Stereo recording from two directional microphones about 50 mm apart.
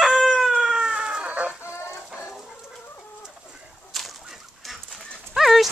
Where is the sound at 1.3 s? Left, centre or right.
Right.